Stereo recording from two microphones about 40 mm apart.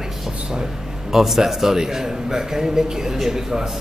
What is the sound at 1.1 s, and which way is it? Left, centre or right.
A man's voice, centre.